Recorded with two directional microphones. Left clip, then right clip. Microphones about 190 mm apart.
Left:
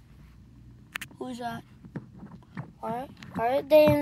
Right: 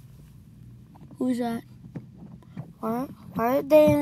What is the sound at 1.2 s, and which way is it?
Speech, 25° right (ahead or behind).